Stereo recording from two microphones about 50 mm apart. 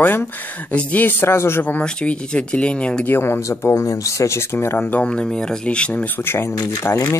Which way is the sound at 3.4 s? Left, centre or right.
Left.